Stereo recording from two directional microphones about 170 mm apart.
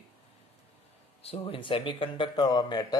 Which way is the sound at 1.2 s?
35° left (ahead or behind).